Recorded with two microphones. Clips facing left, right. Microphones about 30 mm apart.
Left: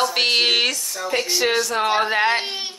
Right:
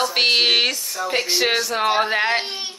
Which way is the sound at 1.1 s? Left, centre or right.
Right.